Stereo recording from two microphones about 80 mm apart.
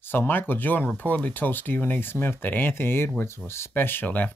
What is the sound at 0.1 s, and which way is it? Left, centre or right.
Speech, left.